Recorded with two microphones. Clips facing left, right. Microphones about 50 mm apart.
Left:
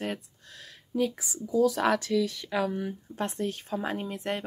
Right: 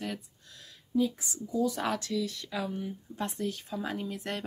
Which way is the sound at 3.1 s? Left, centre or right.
Left.